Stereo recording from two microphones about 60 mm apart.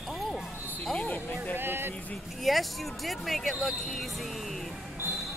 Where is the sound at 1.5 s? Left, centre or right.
Right.